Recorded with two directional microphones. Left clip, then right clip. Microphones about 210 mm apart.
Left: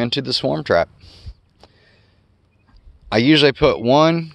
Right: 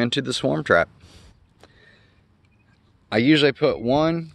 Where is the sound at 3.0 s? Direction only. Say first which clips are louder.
Left 4 dB; 15° left (ahead or behind).